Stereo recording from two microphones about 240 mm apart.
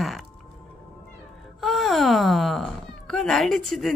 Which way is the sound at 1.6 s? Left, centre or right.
Centre.